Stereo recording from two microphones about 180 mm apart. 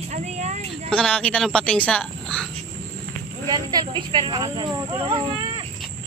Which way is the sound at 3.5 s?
25° right (ahead or behind).